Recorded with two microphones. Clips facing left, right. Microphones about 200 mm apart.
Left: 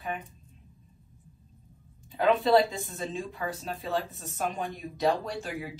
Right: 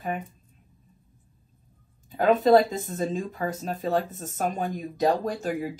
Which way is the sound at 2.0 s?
45° right (ahead or behind).